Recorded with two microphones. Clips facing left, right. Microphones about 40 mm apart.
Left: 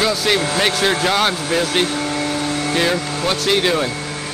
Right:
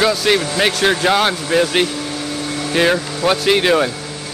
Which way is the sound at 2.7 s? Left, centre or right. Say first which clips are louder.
Right 6 dB; centre.